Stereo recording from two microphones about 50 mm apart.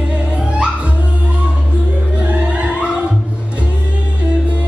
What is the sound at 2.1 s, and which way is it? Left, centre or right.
Music, right.